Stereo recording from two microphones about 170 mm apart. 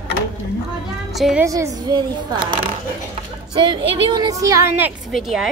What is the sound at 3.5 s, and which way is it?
A woman's voice, 30° right (ahead or behind).